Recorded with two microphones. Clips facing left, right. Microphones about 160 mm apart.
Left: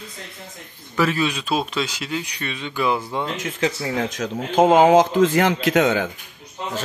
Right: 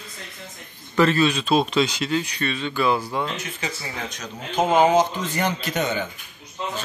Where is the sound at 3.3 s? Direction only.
75° left (ahead or behind).